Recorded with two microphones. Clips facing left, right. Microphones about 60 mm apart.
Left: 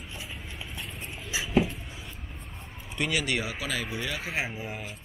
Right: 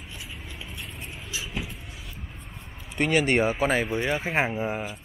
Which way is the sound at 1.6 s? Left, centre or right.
Centre.